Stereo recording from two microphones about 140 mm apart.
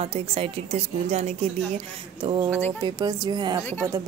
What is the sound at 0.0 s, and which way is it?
A woman's voice, 40° right (ahead or behind).